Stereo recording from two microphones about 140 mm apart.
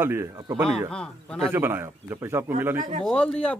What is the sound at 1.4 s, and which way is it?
A man's voice, 15° right (ahead or behind).